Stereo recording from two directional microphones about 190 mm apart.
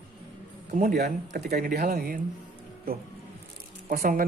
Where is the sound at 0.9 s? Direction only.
60° right (ahead or behind).